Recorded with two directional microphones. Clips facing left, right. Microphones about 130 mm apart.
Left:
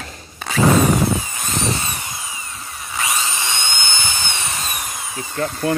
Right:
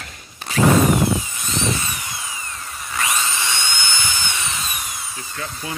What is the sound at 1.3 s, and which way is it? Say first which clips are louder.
Drill: left 1 dB; 45° left (ahead or behind).